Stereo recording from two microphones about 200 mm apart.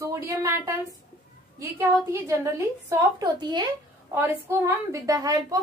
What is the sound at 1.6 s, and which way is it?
A woman's voice, 15° right (ahead or behind).